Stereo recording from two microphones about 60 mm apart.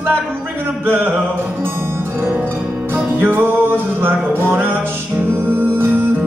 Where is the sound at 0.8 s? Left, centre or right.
Right.